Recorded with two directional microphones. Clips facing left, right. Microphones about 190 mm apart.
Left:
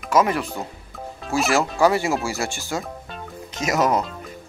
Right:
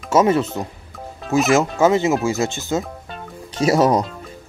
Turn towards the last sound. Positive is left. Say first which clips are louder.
# right 5 dB
turn(degrees=-30)  # may be behind; listen again after turning